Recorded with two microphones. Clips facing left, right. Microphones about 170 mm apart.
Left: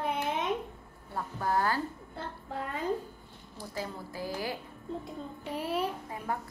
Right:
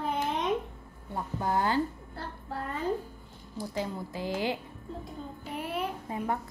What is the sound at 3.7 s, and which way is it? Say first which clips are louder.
Speech: right 3 dB; 20° right (ahead or behind).